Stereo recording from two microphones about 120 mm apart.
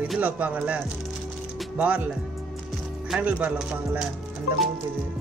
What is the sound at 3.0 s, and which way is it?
Speech, 5° right (ahead or behind).